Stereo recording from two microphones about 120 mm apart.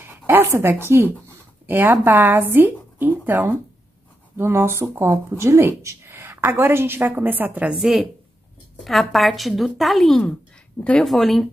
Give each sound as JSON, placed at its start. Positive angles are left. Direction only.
{"t": 0.3, "sound": "speech", "side_deg": -20}
{"t": 7.8, "sound": "a woman's voice", "side_deg": 0}